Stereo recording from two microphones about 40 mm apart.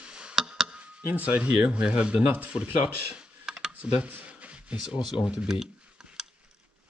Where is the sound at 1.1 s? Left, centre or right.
Right.